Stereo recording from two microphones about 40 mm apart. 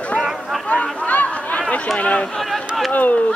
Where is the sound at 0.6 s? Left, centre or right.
Left.